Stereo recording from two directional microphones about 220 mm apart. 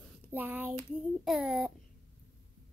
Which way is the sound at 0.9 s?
5° right (ahead or behind).